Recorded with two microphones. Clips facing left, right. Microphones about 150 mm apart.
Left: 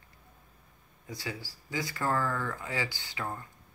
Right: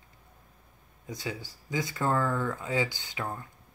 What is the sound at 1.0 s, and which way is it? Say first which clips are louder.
Speech: right 3 dB; 20° right (ahead or behind).